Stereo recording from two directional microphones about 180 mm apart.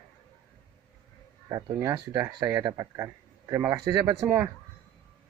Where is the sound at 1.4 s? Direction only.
20° right (ahead or behind).